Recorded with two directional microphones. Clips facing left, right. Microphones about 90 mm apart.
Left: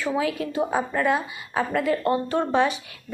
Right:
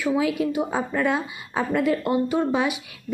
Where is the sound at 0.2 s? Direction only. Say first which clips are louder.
Right 3 dB; 20° right (ahead or behind).